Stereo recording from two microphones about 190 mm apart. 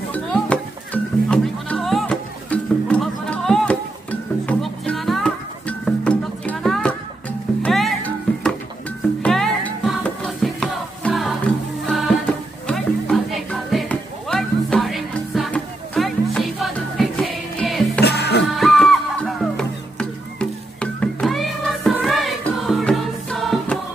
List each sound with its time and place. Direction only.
0.1 s music: 5° left (ahead or behind)
18.0 s music: 60° left (ahead or behind)
18.6 s music: centre (ahead or behind)